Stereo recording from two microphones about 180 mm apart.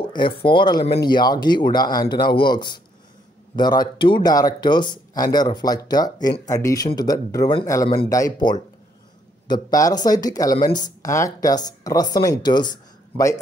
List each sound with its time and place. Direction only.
0.1 s speech: 25° left (ahead or behind)